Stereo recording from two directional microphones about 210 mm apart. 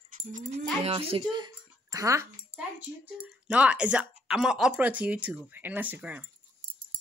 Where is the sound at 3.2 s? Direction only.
5° right (ahead or behind).